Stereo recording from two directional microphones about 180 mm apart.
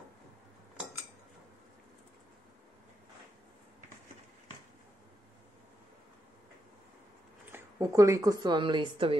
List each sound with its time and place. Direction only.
7.5 s a woman's voice: 15° right (ahead or behind)